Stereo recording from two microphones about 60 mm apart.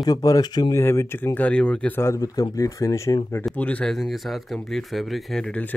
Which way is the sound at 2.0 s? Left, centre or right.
Left.